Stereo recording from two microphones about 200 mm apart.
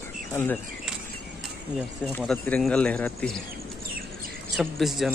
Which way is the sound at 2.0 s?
5° left (ahead or behind).